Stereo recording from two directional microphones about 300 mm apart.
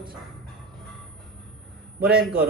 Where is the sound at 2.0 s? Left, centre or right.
Centre.